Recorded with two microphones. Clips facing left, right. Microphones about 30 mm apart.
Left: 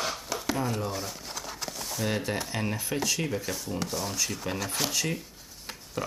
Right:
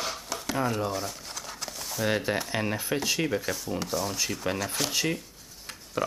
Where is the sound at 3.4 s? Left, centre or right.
Centre.